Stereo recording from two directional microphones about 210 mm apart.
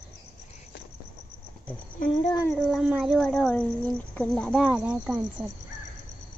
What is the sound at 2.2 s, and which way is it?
Child singing, 20° left (ahead or behind).